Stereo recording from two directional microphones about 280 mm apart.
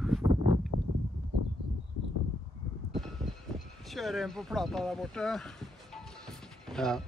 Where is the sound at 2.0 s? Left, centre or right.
Left.